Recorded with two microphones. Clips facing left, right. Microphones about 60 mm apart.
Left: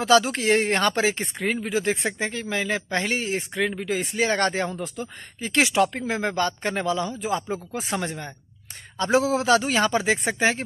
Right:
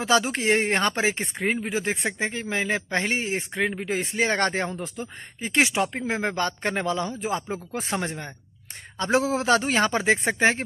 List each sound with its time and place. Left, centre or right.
0.0 s speech: right
7.2 s speech: right